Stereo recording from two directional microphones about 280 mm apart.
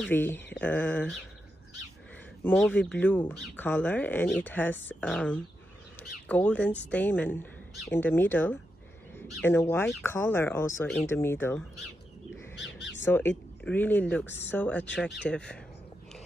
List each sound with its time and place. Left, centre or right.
0.0 s speech: centre
2.4 s speech: centre
12.5 s crow: left
13.0 s speech: centre
14.2 s speech: left
14.5 s speech: centre